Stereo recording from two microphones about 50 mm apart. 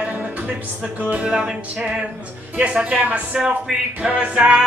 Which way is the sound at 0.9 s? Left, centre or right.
Right.